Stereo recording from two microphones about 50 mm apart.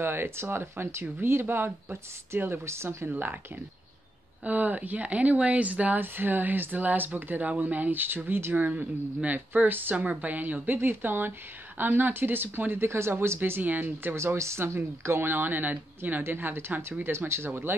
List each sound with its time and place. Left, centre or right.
0.0 s speech: right
3.1 s speech: right
4.5 s speech: right
5.9 s speech: right
8.5 s speech: right
12.8 s speech: right
13.4 s speech: right
14.1 s speech: right
17.7 s speech: right